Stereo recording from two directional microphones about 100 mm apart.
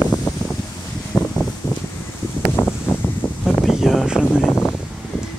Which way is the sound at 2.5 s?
20° left (ahead or behind).